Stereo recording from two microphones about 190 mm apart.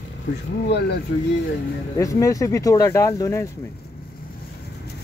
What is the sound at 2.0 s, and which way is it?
Speech, 15° left (ahead or behind).